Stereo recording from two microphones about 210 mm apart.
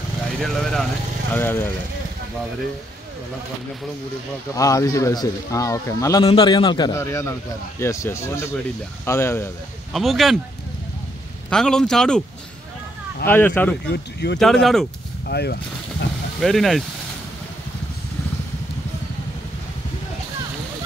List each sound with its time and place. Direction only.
0.4 s a man's voice: centre (ahead or behind)
4.6 s a man's voice: 15° left (ahead or behind)
9.9 s a man's voice: centre (ahead or behind)
11.5 s a man's voice: 5° left (ahead or behind)
13.3 s speech: 10° left (ahead or behind)
13.8 s speech: 50° left (ahead or behind)
14.4 s a man's voice: centre (ahead or behind)
15.2 s speech: 50° left (ahead or behind)
16.3 s a man's voice: centre (ahead or behind)